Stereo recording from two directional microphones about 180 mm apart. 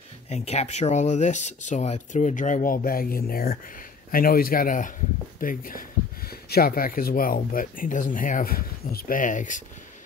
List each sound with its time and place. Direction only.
0.3 s speech: 35° left (ahead or behind)